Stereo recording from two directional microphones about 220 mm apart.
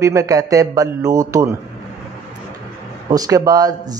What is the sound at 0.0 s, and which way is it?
A man's voice, 15° right (ahead or behind).